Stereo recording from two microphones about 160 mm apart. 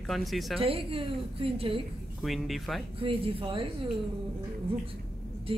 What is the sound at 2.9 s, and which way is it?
Speech, 35° right (ahead or behind).